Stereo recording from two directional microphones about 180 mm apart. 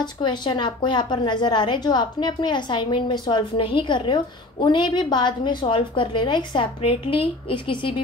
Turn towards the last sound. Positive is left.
turn(degrees=30)  # may be behind; listen again after turning